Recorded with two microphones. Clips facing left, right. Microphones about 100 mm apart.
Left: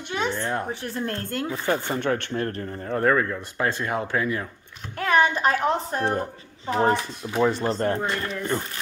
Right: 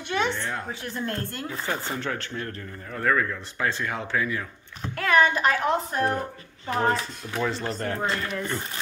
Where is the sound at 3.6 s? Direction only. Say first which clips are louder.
Left 3 dB; 40° left (ahead or behind); by 7.5 s 25° left (ahead or behind).